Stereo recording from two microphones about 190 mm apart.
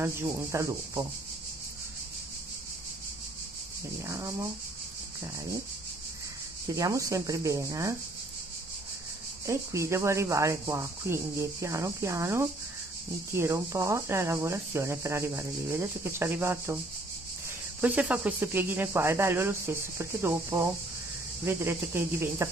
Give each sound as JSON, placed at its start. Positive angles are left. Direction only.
{"t": 0.0, "sound": "speech", "side_deg": -15}
{"t": 4.0, "sound": "speech", "side_deg": -15}
{"t": 6.7, "sound": "speech", "side_deg": -15}
{"t": 9.5, "sound": "speech", "side_deg": -15}
{"t": 17.7, "sound": "speech", "side_deg": -10}